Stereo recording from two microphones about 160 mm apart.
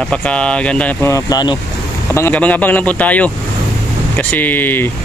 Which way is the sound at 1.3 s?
25° left (ahead or behind).